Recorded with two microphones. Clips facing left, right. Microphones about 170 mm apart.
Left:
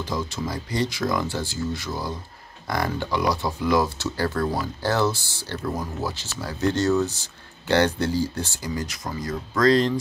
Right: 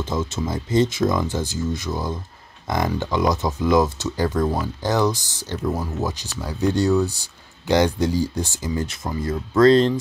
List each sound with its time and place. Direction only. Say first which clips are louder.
0.0 s speech: right 3 dB; 20° right (ahead or behind)